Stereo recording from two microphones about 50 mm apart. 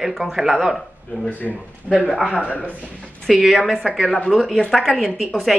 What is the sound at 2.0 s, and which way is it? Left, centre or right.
Speech, centre.